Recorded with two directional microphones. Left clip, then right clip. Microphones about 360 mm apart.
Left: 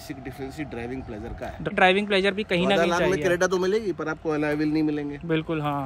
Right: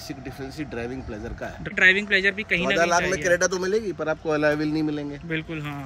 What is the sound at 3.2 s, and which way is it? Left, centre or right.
Speech, left.